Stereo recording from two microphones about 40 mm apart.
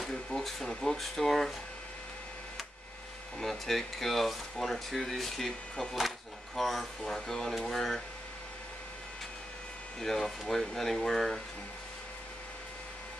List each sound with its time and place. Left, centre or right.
0.1 s speech: centre
3.3 s speech: centre
6.5 s speech: centre
9.9 s speech: centre